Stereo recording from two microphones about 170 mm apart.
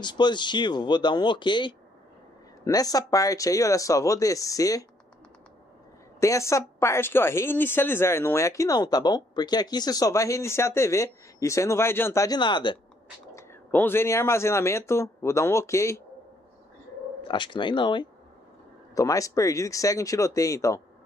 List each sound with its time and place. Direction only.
0.0 s speech: 25° left (ahead or behind)
6.1 s speech: 15° left (ahead or behind)
13.3 s speech: 15° left (ahead or behind)
17.2 s speech: 30° left (ahead or behind)